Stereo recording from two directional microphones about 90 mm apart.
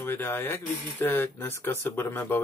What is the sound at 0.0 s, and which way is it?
Speech, 25° left (ahead or behind).